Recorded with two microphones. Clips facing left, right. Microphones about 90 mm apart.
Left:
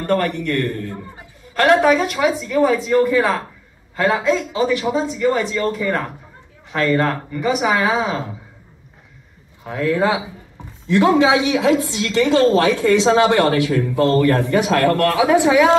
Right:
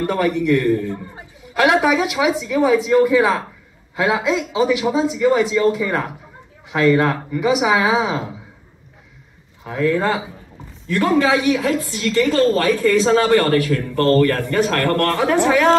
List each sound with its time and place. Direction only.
0.0 s a man's voice: 5° right (ahead or behind)
9.7 s speech: centre (ahead or behind)
10.9 s speech: 15° left (ahead or behind)